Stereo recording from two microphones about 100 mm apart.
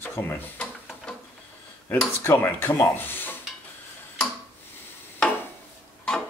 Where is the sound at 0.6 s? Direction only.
5° left (ahead or behind).